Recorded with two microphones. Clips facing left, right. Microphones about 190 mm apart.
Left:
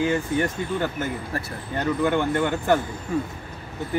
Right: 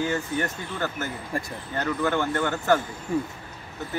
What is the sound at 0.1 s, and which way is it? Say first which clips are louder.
Speech: left 4 dB; 15° left (ahead or behind).